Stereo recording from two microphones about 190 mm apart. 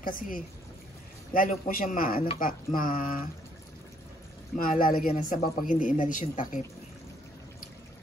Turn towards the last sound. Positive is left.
turn(degrees=45)  # may be behind; listen again after turning